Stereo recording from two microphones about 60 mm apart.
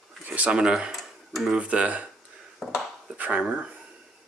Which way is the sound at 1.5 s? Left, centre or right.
Right.